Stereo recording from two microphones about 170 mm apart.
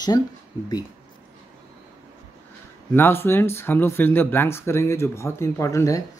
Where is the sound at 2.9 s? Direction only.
15° left (ahead or behind).